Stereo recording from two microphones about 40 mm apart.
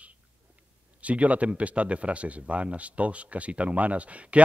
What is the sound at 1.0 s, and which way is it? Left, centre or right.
Speech, right.